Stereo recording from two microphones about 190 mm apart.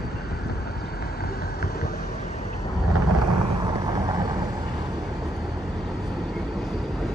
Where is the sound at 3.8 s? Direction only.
20° right (ahead or behind).